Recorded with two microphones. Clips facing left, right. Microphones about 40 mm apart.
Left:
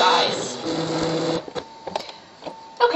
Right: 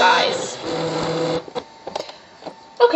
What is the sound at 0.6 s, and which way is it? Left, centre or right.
Sewing machine, right.